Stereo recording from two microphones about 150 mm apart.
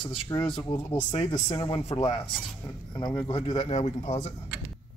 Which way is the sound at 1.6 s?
45° left (ahead or behind).